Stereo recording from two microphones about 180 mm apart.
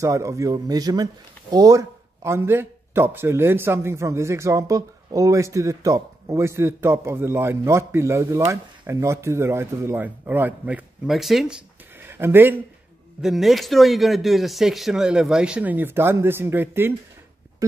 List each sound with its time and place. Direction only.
0.0 s speech: 15° right (ahead or behind); by 11.5 s centre (ahead or behind)
12.0 s speech: 10° right (ahead or behind)
13.2 s a man's voice: centre (ahead or behind)